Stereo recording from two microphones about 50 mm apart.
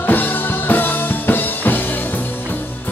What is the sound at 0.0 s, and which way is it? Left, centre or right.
Music, left.